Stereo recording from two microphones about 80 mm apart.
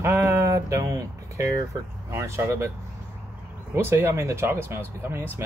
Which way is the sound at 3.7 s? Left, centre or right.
Right.